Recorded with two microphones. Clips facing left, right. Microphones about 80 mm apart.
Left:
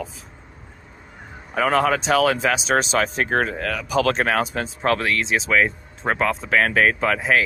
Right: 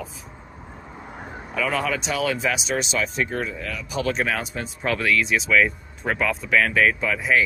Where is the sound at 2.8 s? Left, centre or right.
Left.